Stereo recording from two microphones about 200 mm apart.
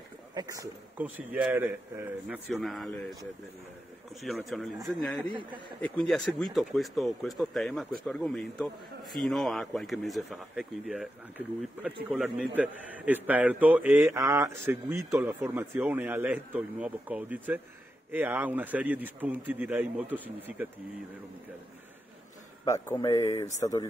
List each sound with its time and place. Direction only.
0.3 s speech: 20° right (ahead or behind); by 3.2 s centre (ahead or behind)
4.2 s speech: centre (ahead or behind)
22.7 s speech: 15° left (ahead or behind)